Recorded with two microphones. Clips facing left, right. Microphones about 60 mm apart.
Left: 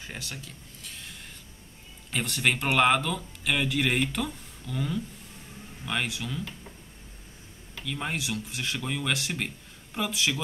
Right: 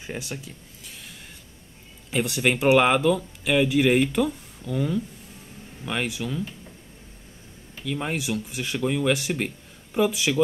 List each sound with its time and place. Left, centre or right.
0.0 s speech: centre
0.8 s a sound: centre
2.0 s speech: centre
7.8 s speech: centre